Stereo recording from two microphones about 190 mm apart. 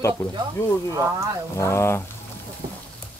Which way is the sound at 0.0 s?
15° left (ahead or behind).